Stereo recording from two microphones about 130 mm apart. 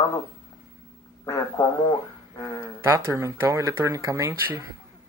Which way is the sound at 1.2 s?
25° left (ahead or behind).